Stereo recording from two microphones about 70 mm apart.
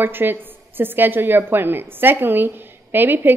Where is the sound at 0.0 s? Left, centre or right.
Right.